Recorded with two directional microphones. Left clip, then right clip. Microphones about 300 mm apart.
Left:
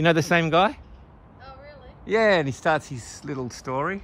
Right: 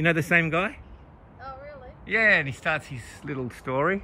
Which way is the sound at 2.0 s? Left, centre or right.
Centre.